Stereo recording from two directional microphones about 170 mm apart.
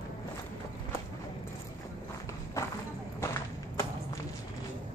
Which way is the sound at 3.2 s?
15° left (ahead or behind).